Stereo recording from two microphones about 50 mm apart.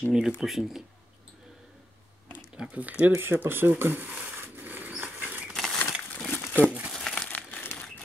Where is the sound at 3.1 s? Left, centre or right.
Right.